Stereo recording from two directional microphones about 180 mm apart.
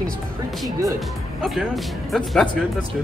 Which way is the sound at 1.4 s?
Centre (ahead or behind).